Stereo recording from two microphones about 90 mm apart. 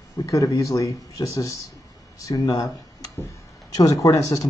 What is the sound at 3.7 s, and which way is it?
Speech, 40° left (ahead or behind).